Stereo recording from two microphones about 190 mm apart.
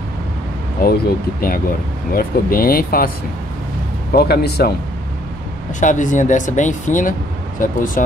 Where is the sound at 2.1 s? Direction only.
50° left (ahead or behind).